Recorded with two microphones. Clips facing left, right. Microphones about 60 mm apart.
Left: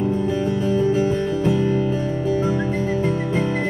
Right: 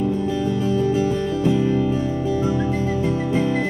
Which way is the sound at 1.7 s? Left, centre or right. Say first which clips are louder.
Right 1 dB; left.